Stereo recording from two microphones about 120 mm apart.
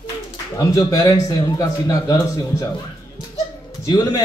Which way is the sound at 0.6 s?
30° left (ahead or behind).